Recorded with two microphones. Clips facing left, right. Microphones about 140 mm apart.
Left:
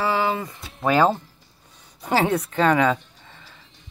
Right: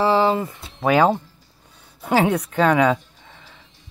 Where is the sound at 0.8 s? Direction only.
10° right (ahead or behind).